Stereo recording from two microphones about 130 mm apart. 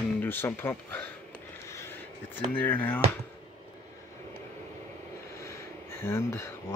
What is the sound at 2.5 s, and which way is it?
Speech, 15° left (ahead or behind).